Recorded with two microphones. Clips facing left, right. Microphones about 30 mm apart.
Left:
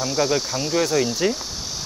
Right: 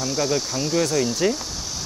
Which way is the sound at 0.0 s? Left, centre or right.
Centre.